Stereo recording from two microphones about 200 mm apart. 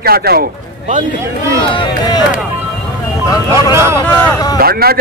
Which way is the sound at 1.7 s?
20° left (ahead or behind).